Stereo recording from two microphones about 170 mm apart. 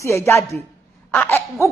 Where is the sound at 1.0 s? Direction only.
10° left (ahead or behind).